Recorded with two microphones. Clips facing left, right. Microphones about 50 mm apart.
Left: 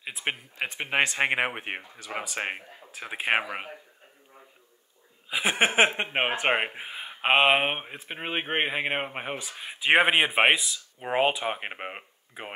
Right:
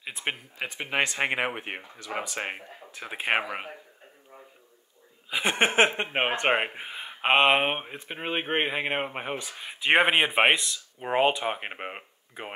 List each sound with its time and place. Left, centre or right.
0.0 s speech: centre
0.6 s speech: left
2.1 s a sound: centre
2.9 s speech: centre
5.3 s a sound: centre
6.1 s speech: centre